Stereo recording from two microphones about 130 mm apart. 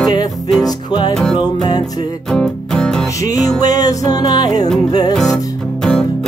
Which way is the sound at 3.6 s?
30° left (ahead or behind).